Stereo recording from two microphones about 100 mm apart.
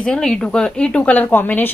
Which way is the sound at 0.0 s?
5° left (ahead or behind).